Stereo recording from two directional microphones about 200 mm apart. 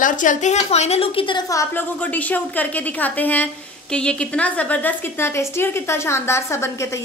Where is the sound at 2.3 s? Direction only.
10° left (ahead or behind).